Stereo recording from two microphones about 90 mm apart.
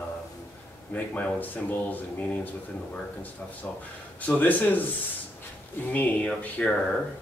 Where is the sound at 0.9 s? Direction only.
20° left (ahead or behind).